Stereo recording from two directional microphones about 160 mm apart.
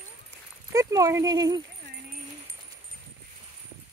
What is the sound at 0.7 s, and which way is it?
Speech, 20° right (ahead or behind).